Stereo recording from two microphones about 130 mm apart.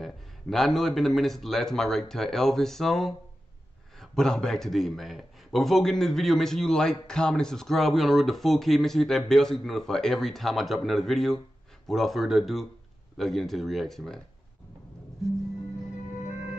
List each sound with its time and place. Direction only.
0.0 s a man's voice: centre (ahead or behind)